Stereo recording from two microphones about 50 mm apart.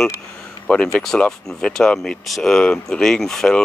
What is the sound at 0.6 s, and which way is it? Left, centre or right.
Speech, centre.